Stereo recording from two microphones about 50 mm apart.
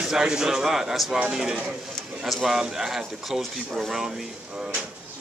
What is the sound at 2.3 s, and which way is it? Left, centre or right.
A man's voice, centre.